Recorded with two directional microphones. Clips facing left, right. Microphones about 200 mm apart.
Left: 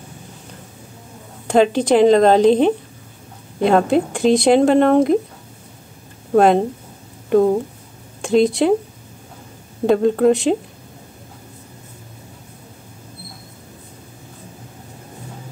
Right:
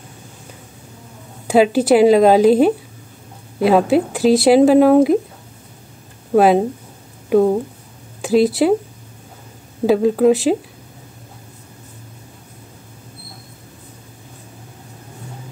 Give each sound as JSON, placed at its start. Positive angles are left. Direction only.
{"t": 1.5, "sound": "speech", "side_deg": -5}
{"t": 6.3, "sound": "speech", "side_deg": -5}
{"t": 9.8, "sound": "speech", "side_deg": -5}